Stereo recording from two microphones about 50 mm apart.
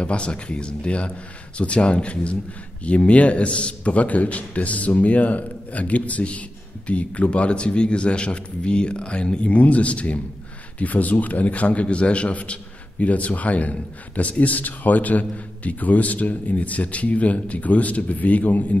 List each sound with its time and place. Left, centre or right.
0.0 s a man's voice: left